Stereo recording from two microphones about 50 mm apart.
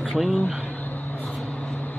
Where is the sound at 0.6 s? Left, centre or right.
Left.